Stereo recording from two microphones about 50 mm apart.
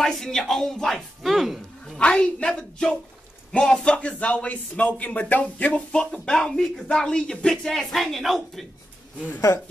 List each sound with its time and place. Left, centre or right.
0.0 s speech: centre
2.0 s a woman's voice: centre